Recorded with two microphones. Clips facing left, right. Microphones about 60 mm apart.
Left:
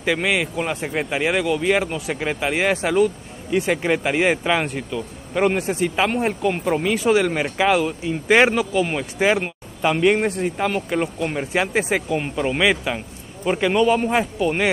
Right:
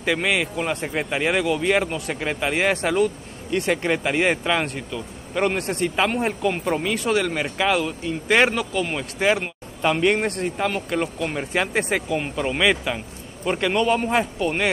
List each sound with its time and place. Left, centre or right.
0.0 s speech: centre